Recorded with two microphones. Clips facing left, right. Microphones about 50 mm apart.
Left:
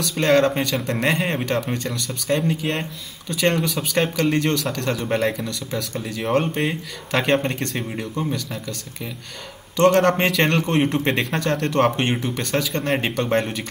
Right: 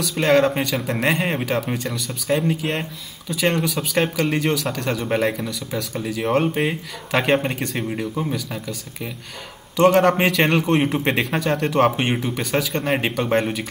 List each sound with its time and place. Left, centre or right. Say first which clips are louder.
0.0 s a man's voice: even; centre